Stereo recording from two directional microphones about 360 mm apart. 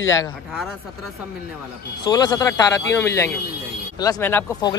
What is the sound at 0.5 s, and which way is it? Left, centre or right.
Speech, centre.